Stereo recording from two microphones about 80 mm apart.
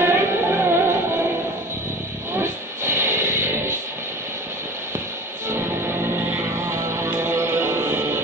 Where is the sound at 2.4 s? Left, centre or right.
Right.